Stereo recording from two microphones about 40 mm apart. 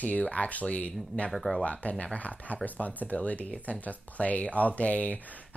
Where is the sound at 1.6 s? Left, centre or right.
Left.